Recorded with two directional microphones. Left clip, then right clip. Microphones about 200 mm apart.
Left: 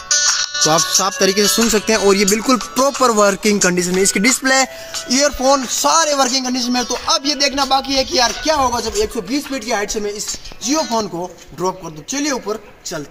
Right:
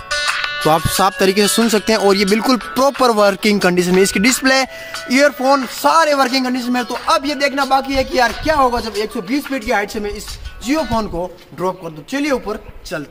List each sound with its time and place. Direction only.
0.1 s music: 5° right (ahead or behind)
0.7 s speech: 40° right (ahead or behind)
5.0 s speech: 5° right (ahead or behind)